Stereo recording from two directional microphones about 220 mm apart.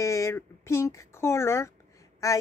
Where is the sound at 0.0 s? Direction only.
15° left (ahead or behind).